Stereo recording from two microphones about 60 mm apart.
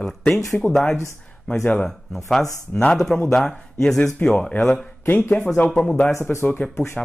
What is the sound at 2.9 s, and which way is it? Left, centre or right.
Speech, centre.